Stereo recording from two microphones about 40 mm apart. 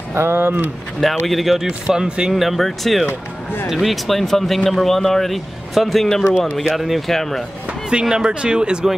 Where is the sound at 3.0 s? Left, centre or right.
Left.